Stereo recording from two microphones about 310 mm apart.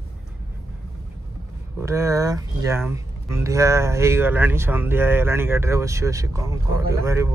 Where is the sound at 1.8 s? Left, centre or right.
Centre.